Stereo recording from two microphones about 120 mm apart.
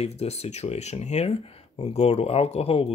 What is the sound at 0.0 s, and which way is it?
Speech, 60° left (ahead or behind).